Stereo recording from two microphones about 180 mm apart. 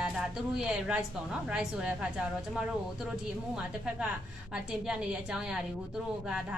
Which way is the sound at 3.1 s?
5° right (ahead or behind).